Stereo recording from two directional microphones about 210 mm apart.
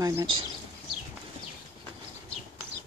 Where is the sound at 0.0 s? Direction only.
15° right (ahead or behind).